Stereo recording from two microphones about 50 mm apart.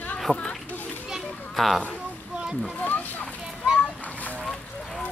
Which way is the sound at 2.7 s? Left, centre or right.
Left.